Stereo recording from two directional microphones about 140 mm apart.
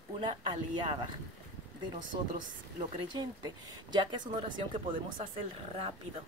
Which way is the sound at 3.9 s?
35° right (ahead or behind).